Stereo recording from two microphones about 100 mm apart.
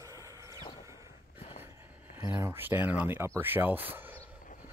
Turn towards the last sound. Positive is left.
turn(degrees=-20)  # may be behind; listen again after turning